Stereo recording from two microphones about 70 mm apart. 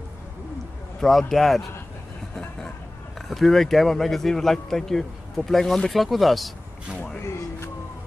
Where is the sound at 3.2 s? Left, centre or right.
Centre.